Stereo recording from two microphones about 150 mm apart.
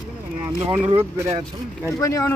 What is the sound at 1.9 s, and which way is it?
Speech, 20° left (ahead or behind).